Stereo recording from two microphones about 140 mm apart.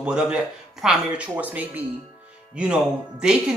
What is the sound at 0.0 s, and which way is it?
A woman's voice, 5° right (ahead or behind).